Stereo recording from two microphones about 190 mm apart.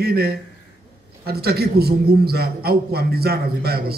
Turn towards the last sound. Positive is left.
turn(degrees=-55)  # may be behind; listen again after turning